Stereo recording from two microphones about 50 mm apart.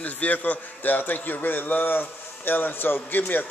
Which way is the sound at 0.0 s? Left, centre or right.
Left.